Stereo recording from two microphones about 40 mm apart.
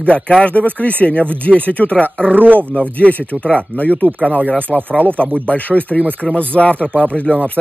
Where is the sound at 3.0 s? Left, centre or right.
Left.